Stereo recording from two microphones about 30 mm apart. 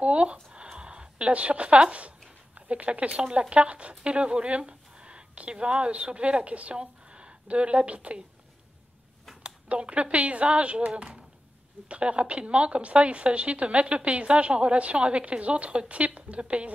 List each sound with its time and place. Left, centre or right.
0.0 s speech: right
9.4 s speech: right
11.9 s a woman's voice: right